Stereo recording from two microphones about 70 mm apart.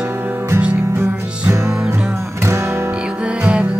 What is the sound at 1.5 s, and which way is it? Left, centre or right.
Music, right.